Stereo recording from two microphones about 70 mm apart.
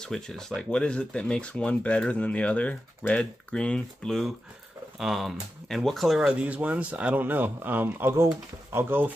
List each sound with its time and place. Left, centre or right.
0.0 s speech: centre
4.9 s speech: centre
6.4 s speech: right